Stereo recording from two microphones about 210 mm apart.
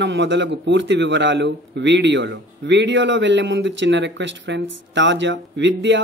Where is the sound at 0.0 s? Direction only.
60° right (ahead or behind).